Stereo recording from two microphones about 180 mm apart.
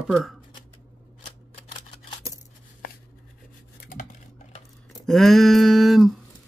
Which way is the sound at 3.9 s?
45° left (ahead or behind).